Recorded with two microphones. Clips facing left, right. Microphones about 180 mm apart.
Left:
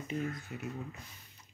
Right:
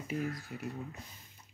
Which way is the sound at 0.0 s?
5° right (ahead or behind).